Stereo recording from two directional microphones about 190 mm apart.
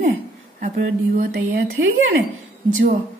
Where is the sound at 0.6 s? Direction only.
45° right (ahead or behind).